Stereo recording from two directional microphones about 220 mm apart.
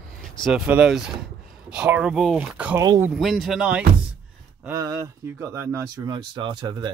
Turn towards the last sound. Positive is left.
turn(degrees=-20)  # may be behind; listen again after turning